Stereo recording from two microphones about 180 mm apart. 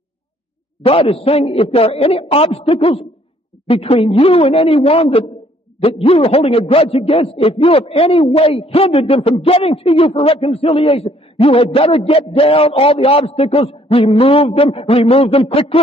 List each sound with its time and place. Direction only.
0.8 s a man's voice: 30° left (ahead or behind)